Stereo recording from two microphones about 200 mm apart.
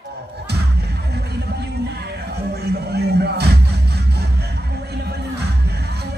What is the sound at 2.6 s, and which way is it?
Music, 55° right (ahead or behind).